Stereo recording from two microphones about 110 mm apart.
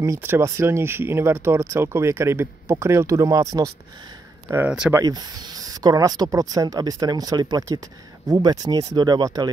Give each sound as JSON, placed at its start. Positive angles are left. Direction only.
{"t": 0.0, "sound": "speech", "side_deg": -25}